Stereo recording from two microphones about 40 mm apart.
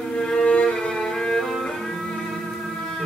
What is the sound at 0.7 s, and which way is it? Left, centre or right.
Music, centre.